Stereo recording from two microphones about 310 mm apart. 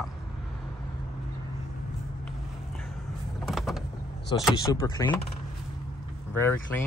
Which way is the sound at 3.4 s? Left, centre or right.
Centre.